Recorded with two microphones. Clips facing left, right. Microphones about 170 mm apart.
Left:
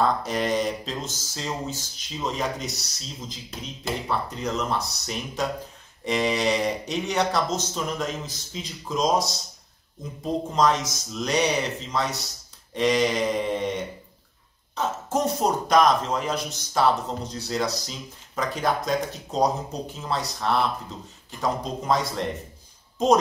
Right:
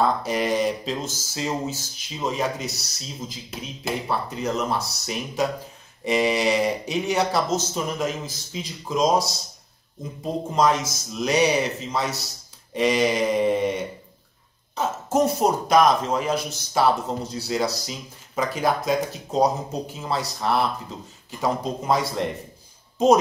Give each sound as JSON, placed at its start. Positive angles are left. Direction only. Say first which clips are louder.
{"t": 0.0, "sound": "speech", "louder": "right 1 dB", "side_deg": -5}
{"t": 14.8, "sound": "a sound", "louder": "right 4 dB", "side_deg": -5}
{"t": 15.7, "sound": "speech", "louder": "right 1 dB", "side_deg": -5}